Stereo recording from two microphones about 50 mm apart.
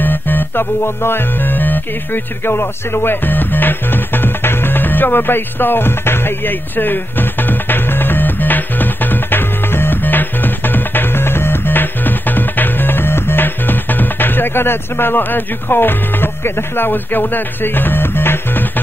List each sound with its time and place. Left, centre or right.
0.0 s music: left